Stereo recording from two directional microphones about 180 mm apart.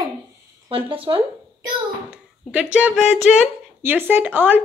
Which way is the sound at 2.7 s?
5° right (ahead or behind).